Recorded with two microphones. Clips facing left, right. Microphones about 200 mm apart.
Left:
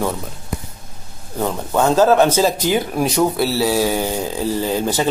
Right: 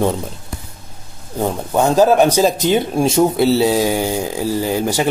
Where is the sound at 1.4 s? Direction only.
15° right (ahead or behind).